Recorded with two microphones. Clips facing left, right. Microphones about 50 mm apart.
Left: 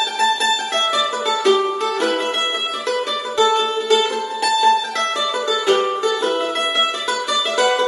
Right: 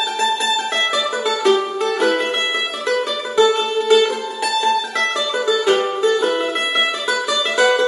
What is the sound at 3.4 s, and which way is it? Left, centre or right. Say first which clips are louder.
Music: right 2 dB; centre.